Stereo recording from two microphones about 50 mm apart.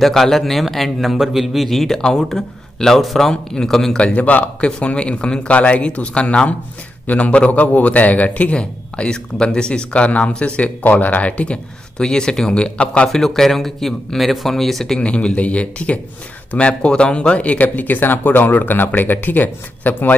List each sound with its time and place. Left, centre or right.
0.0 s speech: centre
2.0 s speech: centre
4.0 s speech: left
4.6 s speech: centre
13.1 s speech: centre
15.0 s speech: left